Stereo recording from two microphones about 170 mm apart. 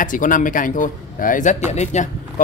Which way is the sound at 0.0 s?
50° left (ahead or behind).